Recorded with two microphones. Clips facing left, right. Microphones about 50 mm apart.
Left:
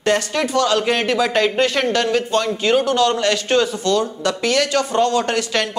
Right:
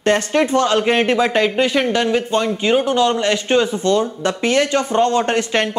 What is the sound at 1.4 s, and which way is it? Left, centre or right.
Speech, centre.